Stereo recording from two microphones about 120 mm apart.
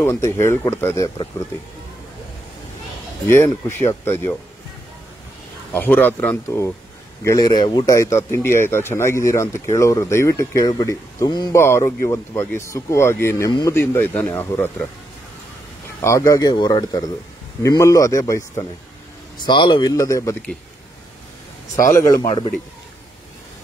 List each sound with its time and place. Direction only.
0.0 s speech: 20° left (ahead or behind)
1.0 s speech: 40° left (ahead or behind)
3.3 s speech: 20° left (ahead or behind)
5.7 s speech: 15° left (ahead or behind)
7.2 s speech: 35° left (ahead or behind)
7.9 s speech: 25° left (ahead or behind)
11.5 s speech: 25° left (ahead or behind)
16.0 s speech: 25° left (ahead or behind)
16.5 s speech: 40° left (ahead or behind)
19.4 s speech: 40° left (ahead or behind)
21.9 s speech: 30° left (ahead or behind)